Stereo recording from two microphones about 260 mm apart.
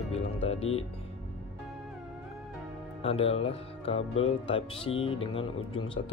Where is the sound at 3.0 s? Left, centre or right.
Left.